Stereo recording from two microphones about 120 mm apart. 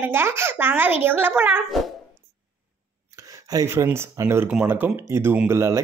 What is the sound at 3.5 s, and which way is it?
A child's voice, 25° right (ahead or behind).